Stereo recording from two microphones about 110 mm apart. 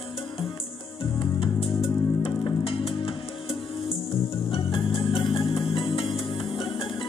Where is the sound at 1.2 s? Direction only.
50° left (ahead or behind).